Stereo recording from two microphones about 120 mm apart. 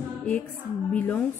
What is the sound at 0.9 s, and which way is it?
Speech, 15° left (ahead or behind).